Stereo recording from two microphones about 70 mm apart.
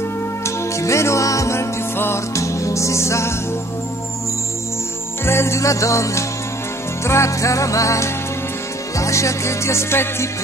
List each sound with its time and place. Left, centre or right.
0.7 s music: left
5.2 s music: left